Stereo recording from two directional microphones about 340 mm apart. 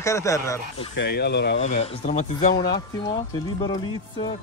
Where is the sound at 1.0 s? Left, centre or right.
Left.